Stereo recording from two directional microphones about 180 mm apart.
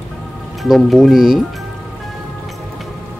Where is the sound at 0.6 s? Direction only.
Centre (ahead or behind).